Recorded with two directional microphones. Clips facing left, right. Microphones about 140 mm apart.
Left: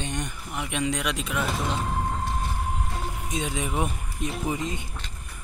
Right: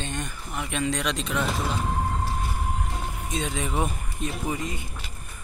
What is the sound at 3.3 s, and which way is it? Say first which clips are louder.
Speech: right 1 dB; 15° left (ahead or behind).